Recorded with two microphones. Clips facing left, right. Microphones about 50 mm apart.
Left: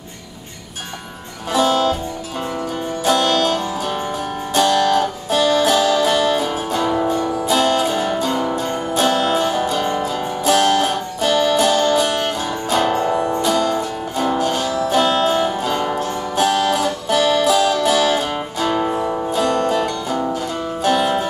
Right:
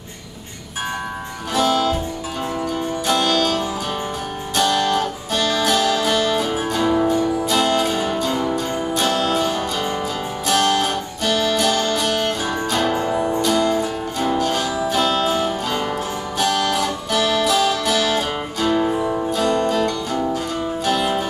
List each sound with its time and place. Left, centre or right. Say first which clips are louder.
1.5 s music: left 2 dB; centre
3.1 s music: left 3 dB; centre
4.6 s music: left 3 dB; centre
11.1 s music: left 4 dB; centre
13.5 s music: even; centre
16.7 s music: left 3 dB; centre